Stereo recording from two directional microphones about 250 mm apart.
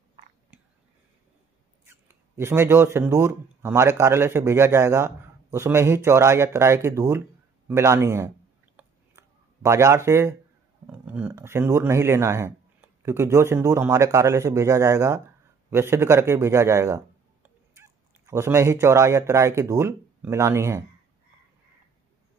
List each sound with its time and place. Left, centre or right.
1.9 s speech: centre
8.7 s a sound: centre
10.9 s speech: centre